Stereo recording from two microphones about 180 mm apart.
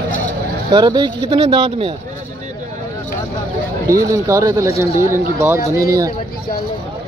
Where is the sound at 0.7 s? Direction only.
25° right (ahead or behind).